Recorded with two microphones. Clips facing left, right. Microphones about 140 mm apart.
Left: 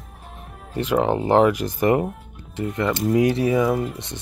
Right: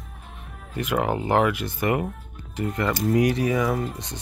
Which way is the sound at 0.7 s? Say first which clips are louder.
Left 4 dB; 30° left (ahead or behind).